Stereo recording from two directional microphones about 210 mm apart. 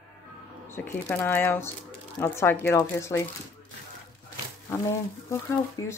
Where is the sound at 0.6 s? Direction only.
10° left (ahead or behind).